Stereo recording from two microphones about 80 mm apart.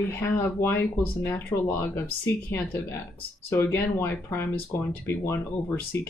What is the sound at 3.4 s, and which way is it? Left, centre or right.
Speech, left.